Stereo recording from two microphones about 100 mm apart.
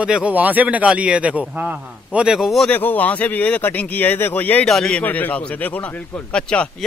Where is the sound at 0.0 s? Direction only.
10° right (ahead or behind).